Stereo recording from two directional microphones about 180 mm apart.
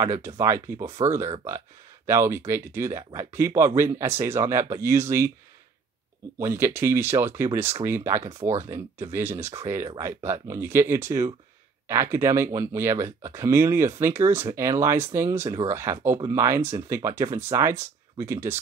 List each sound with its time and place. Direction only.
0.0 s speech: 15° right (ahead or behind)
6.4 s speech: 15° right (ahead or behind)